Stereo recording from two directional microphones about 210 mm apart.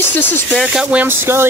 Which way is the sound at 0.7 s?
5° right (ahead or behind).